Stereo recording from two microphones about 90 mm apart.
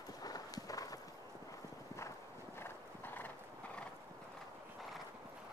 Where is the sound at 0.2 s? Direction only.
45° left (ahead or behind).